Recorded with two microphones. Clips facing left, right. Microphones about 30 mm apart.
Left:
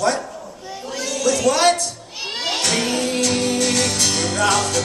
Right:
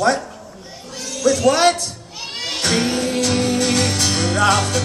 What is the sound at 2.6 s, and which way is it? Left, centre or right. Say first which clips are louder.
Music: right 4 dB; centre.